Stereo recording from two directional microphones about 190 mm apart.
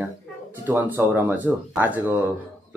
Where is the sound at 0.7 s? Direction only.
10° right (ahead or behind).